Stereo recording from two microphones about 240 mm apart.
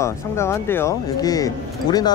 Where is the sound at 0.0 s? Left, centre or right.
Centre.